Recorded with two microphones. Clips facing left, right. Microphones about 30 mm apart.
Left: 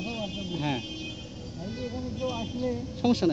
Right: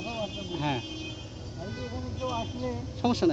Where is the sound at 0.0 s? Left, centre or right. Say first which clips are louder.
Left 1 dB; centre.